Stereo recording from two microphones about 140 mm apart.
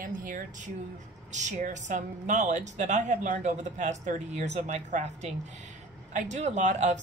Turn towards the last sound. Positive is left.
turn(degrees=-60)  # may be behind; listen again after turning